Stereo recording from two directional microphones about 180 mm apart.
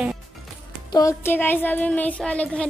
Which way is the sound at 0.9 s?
15° left (ahead or behind).